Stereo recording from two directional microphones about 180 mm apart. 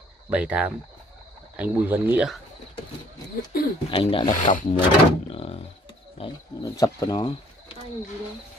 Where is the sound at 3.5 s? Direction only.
55° left (ahead or behind).